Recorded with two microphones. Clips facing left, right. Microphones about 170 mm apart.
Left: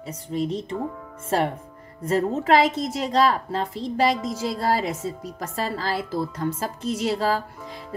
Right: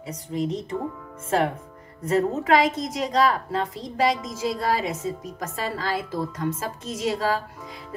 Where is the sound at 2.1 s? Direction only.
30° left (ahead or behind).